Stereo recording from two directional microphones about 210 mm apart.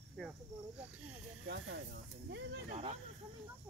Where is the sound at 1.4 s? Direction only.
50° right (ahead or behind).